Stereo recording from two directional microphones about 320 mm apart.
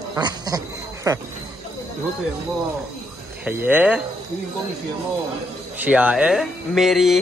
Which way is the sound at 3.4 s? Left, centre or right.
Centre.